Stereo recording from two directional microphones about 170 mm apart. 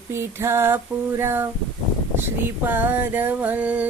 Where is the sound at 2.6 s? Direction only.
10° right (ahead or behind).